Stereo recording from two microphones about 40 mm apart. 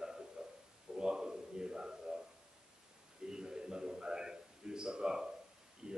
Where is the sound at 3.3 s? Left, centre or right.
Centre.